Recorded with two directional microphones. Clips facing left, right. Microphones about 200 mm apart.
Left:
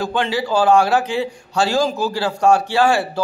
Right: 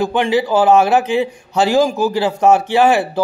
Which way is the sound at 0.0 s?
20° right (ahead or behind).